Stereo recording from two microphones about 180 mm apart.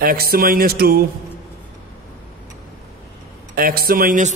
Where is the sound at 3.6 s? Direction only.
55° right (ahead or behind).